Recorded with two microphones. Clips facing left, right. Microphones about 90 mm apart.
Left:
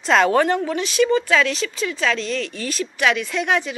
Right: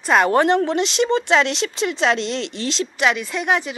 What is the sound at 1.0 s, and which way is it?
Speech, 30° right (ahead or behind).